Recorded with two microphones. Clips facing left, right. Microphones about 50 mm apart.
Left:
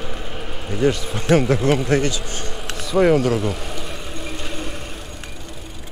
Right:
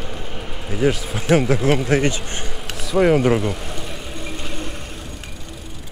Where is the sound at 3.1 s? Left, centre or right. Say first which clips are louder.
Right 2 dB; right.